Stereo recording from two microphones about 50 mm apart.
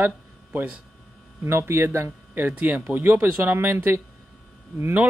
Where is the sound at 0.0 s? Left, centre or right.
Right.